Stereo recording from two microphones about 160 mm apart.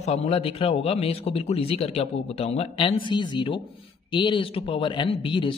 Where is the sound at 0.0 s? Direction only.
40° left (ahead or behind).